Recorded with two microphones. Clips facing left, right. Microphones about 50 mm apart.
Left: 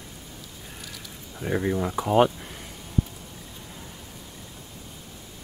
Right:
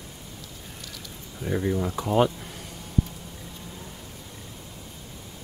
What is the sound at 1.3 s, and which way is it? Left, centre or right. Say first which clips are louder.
Speech: left 1 dB; centre.